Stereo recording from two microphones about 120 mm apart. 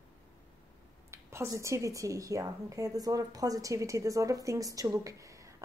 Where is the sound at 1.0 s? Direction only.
25° right (ahead or behind).